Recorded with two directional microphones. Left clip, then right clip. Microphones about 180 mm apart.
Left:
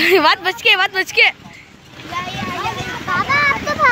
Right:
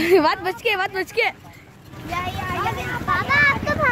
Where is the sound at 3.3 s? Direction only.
55° left (ahead or behind).